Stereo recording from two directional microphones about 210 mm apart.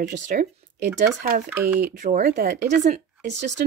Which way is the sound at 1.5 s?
10° right (ahead or behind).